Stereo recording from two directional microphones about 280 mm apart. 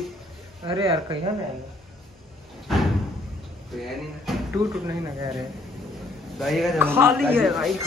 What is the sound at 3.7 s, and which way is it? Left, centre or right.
A man's voice, centre.